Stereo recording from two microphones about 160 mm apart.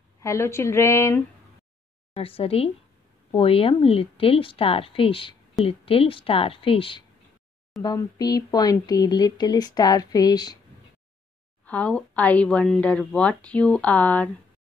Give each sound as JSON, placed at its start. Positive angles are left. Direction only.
{"t": 0.2, "sound": "speech", "side_deg": 15}
{"t": 2.1, "sound": "a woman's voice", "side_deg": 35}
{"t": 11.6, "sound": "speech", "side_deg": 10}